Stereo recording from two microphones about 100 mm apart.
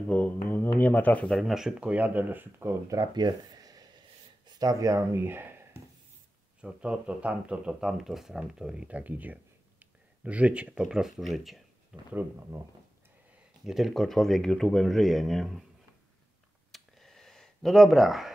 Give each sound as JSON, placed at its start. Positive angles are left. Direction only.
{"t": 0.1, "sound": "speech", "side_deg": 15}
{"t": 1.3, "sound": "speech", "side_deg": -5}
{"t": 2.9, "sound": "speech", "side_deg": -40}
{"t": 6.6, "sound": "speech", "side_deg": -10}
{"t": 13.7, "sound": "speech", "side_deg": 0}
{"t": 16.7, "sound": "a sound", "side_deg": 0}